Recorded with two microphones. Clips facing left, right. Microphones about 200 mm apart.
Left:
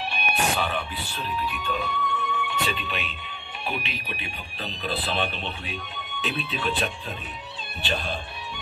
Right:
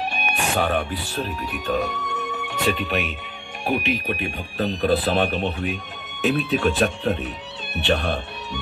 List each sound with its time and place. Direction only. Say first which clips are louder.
0.1 s speech: right 2 dB; 45° right (ahead or behind)
7.7 s speech: right 8 dB; 70° right (ahead or behind)